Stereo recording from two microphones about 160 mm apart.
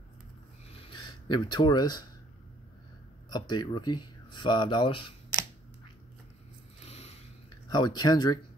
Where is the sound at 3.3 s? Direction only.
25° left (ahead or behind).